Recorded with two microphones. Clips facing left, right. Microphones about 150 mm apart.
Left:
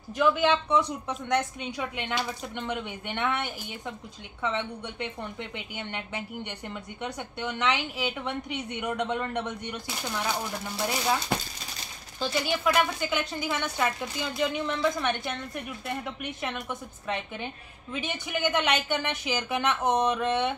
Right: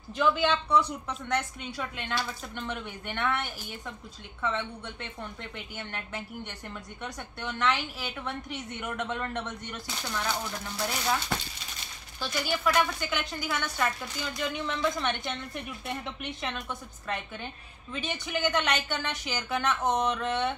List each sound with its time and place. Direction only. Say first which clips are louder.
0.2 s a woman's voice: left 2 dB; 10° left (ahead or behind)
14.4 s a woman's voice: left 3 dB; 10° left (ahead or behind)
17.9 s a woman's voice: left 1 dB; 15° left (ahead or behind)